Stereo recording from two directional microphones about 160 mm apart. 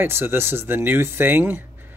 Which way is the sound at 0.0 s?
15° right (ahead or behind).